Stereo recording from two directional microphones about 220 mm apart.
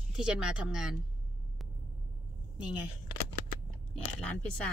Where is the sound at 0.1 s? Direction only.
5° right (ahead or behind).